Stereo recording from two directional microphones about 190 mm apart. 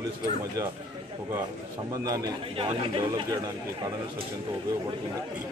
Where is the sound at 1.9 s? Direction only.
20° right (ahead or behind).